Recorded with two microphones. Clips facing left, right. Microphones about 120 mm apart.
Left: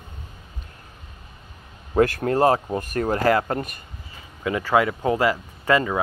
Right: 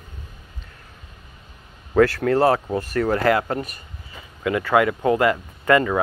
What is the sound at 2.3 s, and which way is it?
Speech, 30° left (ahead or behind).